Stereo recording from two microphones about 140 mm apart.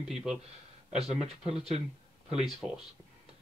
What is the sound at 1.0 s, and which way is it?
Speech, 50° right (ahead or behind).